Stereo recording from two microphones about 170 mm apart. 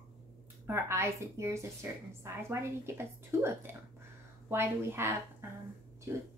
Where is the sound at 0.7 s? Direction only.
15° right (ahead or behind).